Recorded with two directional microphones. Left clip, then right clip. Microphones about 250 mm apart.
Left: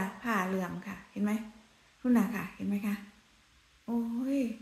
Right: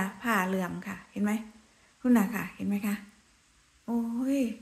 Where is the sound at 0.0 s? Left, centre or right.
Centre.